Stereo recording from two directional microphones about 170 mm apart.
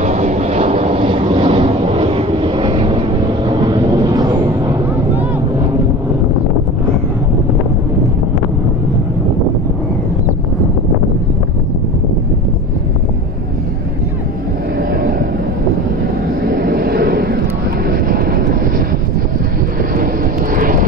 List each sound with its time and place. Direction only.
0.0 s vehicle: 40° right (ahead or behind); by 4.7 s 20° right (ahead or behind)
14.8 s vehicle: 60° right (ahead or behind)
16.4 s vehicle: 60° right (ahead or behind)
20.5 s vehicle: 55° right (ahead or behind)